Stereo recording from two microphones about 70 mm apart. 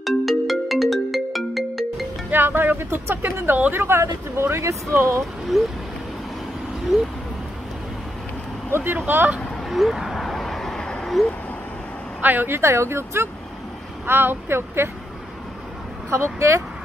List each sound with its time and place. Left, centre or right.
0.0 s ringtone: centre
2.3 s speech: right
5.5 s speech: centre
6.9 s speech: centre
8.7 s speech: right
9.7 s a sound: centre
12.2 s speech: right
16.1 s speech: right